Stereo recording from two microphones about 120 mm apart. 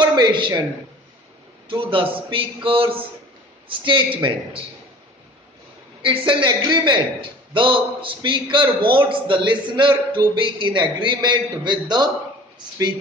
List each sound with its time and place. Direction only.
0.0 s a man's voice: 35° right (ahead or behind)
1.7 s speech: 45° right (ahead or behind)
6.0 s a man's voice: 45° right (ahead or behind)